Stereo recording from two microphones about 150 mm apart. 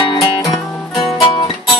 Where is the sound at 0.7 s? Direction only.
Centre (ahead or behind).